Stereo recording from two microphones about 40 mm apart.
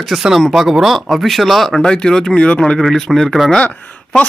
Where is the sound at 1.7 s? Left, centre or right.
Left.